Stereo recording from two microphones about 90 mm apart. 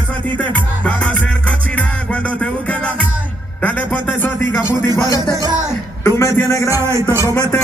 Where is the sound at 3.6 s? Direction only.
15° left (ahead or behind).